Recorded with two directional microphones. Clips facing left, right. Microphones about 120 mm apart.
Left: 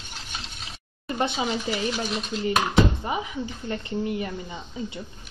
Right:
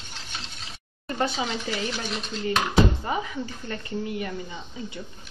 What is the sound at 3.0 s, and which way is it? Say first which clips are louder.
Speech: even; 15° left (ahead or behind).